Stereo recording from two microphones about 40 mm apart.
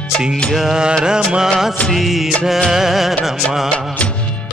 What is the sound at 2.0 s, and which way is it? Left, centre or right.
Speech, centre.